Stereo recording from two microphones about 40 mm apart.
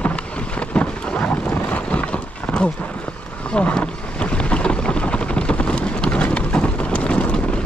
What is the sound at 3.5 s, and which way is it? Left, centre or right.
Boat, left.